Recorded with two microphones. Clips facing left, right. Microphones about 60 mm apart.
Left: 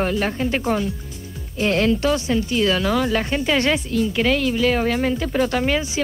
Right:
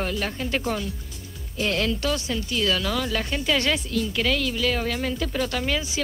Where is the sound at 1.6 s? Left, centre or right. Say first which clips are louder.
Left 6 dB; left.